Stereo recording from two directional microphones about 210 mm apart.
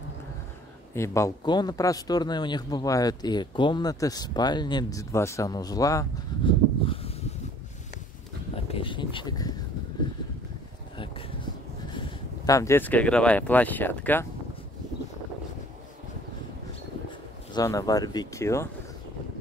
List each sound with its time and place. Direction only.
0.9 s speech: 15° left (ahead or behind)
6.9 s a sound: 30° left (ahead or behind)
8.6 s speech: 25° left (ahead or behind)
12.4 s speech: 15° left (ahead or behind)
17.6 s speech: 15° left (ahead or behind)